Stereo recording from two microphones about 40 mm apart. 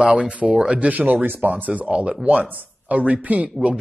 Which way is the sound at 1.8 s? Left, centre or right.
Right.